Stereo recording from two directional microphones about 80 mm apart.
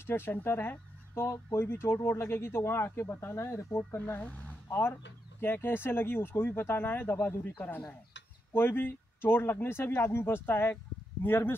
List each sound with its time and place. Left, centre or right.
0.0 s speech: left